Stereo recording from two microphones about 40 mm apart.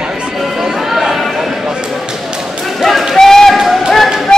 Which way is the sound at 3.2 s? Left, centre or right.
Centre.